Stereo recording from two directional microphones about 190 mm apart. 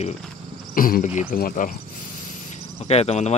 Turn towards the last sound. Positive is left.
turn(degrees=35)  # may be behind; listen again after turning